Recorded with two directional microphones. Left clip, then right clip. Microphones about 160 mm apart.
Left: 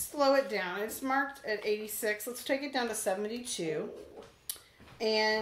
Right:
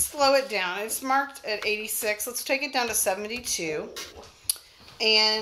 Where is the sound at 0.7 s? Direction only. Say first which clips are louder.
Right 6 dB; 10° right (ahead or behind).